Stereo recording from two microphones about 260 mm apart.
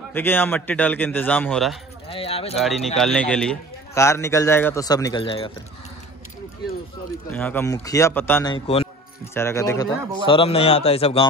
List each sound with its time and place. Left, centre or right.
0.1 s a man's voice: centre
2.0 s speech: left
2.5 s a man's voice: centre
7.2 s a man's voice: centre; by 8.8 s left
9.3 s a man's voice: centre